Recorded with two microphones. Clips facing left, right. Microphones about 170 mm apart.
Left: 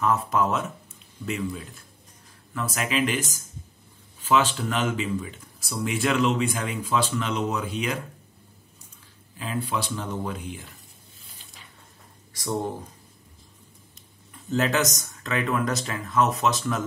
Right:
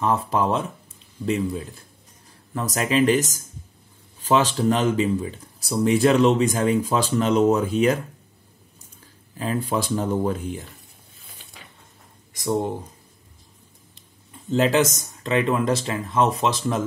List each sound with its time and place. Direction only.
0.0 s speech: 30° right (ahead or behind)
9.4 s speech: 45° right (ahead or behind)
12.4 s speech: 20° right (ahead or behind)
14.5 s speech: 25° right (ahead or behind)